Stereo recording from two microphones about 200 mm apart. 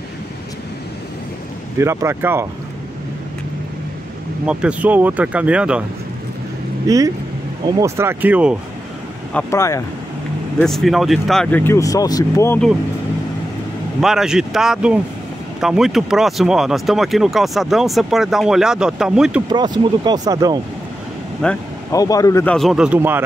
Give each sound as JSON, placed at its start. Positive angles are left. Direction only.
{"t": 1.8, "sound": "speech", "side_deg": -15}
{"t": 4.5, "sound": "speech", "side_deg": -5}
{"t": 6.9, "sound": "speech", "side_deg": -20}
{"t": 9.3, "sound": "speech", "side_deg": 10}
{"t": 10.6, "sound": "speech", "side_deg": 0}
{"t": 14.0, "sound": "speech", "side_deg": -5}
{"t": 20.1, "sound": "speech", "side_deg": -20}
{"t": 21.4, "sound": "speech", "side_deg": 5}
{"t": 21.9, "sound": "speech", "side_deg": 15}